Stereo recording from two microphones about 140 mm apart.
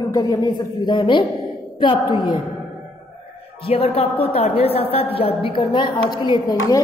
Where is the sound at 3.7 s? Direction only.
45° left (ahead or behind).